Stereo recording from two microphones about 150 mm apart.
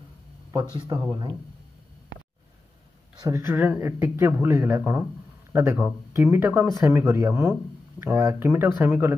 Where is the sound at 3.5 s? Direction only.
10° right (ahead or behind).